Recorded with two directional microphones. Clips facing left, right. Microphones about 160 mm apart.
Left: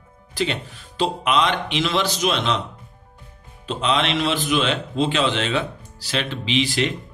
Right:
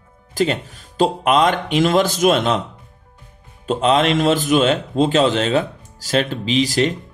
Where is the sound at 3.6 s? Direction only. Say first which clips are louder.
Right 6 dB; 45° right (ahead or behind).